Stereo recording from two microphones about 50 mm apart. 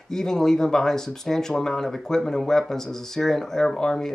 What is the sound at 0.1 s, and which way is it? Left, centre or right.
Speech, centre.